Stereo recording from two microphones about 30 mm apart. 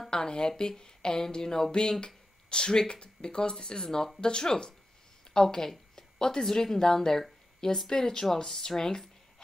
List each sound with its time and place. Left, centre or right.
0.1 s speech: left
1.7 s a woman's voice: left